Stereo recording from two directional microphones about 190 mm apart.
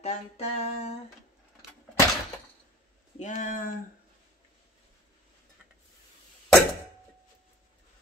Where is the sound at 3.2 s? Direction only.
40° left (ahead or behind).